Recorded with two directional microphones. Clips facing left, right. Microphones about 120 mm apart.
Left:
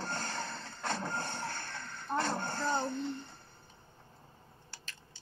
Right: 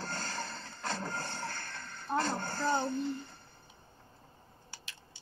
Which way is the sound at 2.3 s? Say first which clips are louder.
Left 1 dB; 20° left (ahead or behind).